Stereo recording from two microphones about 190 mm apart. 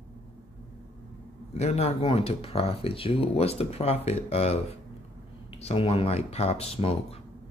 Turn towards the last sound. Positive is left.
turn(degrees=30)  # may be behind; listen again after turning